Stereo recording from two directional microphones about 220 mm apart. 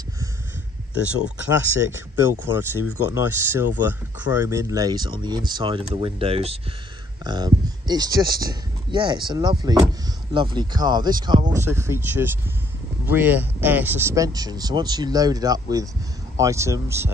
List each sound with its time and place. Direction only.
1.2 s speech: 10° right (ahead or behind)